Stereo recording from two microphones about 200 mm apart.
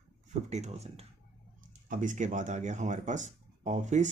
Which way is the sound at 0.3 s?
35° right (ahead or behind).